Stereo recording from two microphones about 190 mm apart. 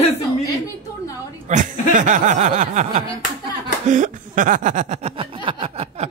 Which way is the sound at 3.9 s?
45° right (ahead or behind).